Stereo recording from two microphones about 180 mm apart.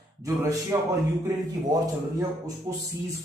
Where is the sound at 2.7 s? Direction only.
20° right (ahead or behind).